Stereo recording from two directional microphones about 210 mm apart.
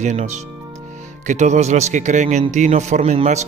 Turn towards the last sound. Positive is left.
turn(degrees=-35)  # may be behind; listen again after turning